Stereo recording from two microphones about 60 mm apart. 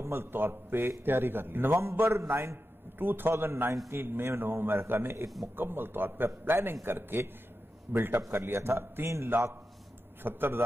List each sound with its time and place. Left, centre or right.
0.0 s a man's voice: right
1.0 s a man's voice: right
10.2 s a man's voice: right